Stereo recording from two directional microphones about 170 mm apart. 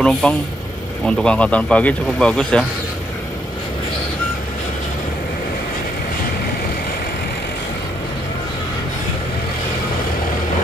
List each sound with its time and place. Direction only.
0.0 s a man's voice: 5° left (ahead or behind)